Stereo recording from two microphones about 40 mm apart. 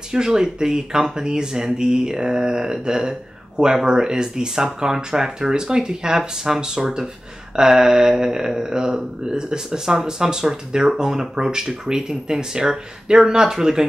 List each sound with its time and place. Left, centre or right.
0.1 s speech: centre